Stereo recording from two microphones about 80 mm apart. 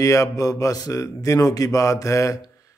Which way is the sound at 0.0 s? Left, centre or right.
Left.